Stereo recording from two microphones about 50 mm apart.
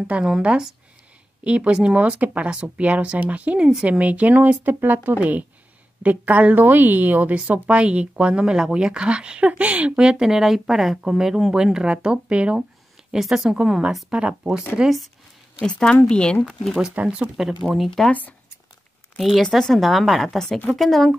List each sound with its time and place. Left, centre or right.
0.2 s speech: centre
6.5 s speech: right
9.9 s speech: centre
13.1 s speech: centre
13.6 s speech: centre
15.6 s a woman's voice: centre
16.9 s speech: right
17.4 s a woman's voice: centre
17.8 s a woman's voice: centre
19.1 s a woman's voice: centre